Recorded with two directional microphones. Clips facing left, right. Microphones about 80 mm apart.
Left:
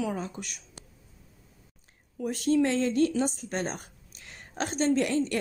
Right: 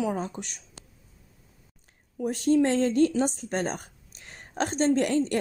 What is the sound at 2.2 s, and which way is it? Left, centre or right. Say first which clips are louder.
Speech: right 2 dB; right.